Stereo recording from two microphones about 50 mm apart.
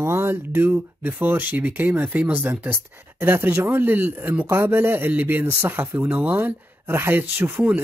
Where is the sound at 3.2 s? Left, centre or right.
Right.